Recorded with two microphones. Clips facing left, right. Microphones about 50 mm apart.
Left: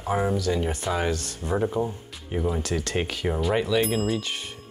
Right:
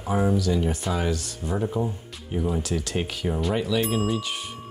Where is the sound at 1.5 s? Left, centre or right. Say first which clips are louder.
Left 2 dB; centre.